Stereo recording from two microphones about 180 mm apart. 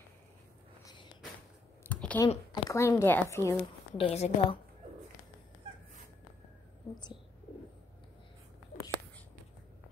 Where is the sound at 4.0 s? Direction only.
35° left (ahead or behind).